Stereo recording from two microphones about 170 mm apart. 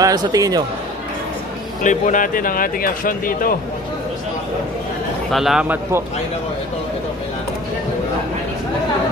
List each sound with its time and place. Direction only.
0.0 s speech: 20° right (ahead or behind)
1.8 s speech: 50° left (ahead or behind)
5.3 s a man's voice: centre (ahead or behind)